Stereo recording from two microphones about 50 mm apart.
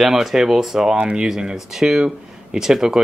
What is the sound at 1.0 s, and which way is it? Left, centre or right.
Speech, right.